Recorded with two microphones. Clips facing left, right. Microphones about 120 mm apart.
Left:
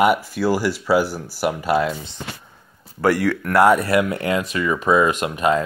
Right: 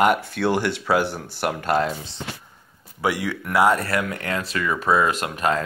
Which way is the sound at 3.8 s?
20° left (ahead or behind).